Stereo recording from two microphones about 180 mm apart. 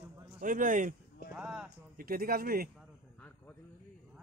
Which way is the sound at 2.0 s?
55° right (ahead or behind).